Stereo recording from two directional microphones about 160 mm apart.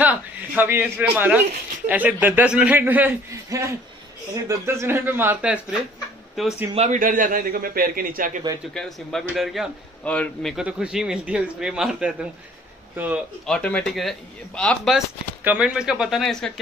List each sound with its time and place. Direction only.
0.0 s a man's voice: 10° right (ahead or behind)
6.7 s a man's voice: 40° right (ahead or behind)
7.0 s a man's voice: 55° right (ahead or behind)
8.7 s speech: centre (ahead or behind)
10.5 s speech: 5° right (ahead or behind)
13.5 s speech: 5° left (ahead or behind)